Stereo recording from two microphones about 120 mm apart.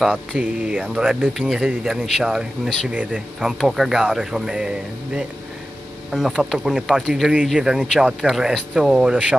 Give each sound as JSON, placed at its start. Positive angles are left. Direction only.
{"t": 0.0, "sound": "speech", "side_deg": -5}